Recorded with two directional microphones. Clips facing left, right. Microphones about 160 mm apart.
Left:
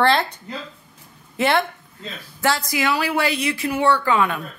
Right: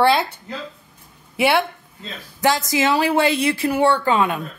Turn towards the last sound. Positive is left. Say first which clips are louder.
# right 1 dB
turn(degrees=-25)  # may be behind; listen again after turning